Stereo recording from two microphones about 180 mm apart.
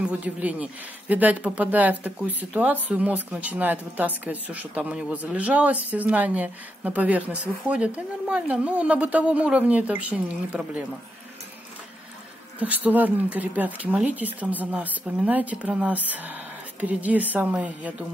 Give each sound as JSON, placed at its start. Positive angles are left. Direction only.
{"t": 0.0, "sound": "speech", "side_deg": -10}
{"t": 12.5, "sound": "speech", "side_deg": -10}